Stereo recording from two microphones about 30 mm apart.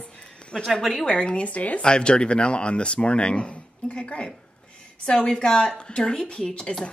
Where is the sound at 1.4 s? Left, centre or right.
Left.